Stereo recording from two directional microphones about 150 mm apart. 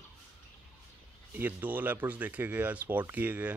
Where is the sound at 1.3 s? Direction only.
10° right (ahead or behind).